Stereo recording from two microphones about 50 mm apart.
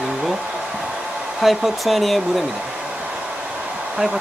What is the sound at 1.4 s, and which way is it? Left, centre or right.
Speech, centre.